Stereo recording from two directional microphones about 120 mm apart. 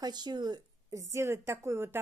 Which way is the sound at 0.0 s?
35° right (ahead or behind).